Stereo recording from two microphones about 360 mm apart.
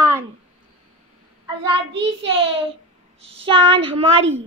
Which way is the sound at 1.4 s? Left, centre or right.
Centre.